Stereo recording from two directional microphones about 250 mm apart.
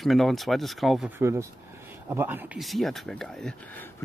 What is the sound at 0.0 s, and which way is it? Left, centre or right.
Speech, centre.